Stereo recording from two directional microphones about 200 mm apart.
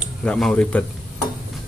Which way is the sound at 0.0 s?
5° left (ahead or behind).